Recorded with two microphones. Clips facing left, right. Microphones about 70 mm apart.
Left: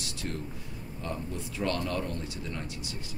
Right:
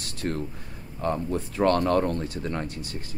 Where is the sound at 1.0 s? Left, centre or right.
Right.